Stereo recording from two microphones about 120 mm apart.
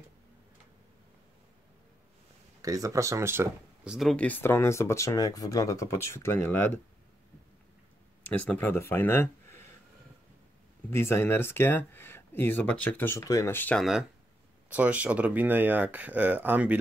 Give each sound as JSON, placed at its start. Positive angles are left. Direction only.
{"t": 2.6, "sound": "speech", "side_deg": -30}
{"t": 3.8, "sound": "speech", "side_deg": -5}
{"t": 4.2, "sound": "speech", "side_deg": 15}
{"t": 8.3, "sound": "speech", "side_deg": 10}
{"t": 10.9, "sound": "speech", "side_deg": 20}
{"t": 13.7, "sound": "speech", "side_deg": -5}